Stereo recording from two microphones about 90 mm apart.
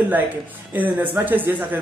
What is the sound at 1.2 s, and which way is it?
Speech, 20° right (ahead or behind).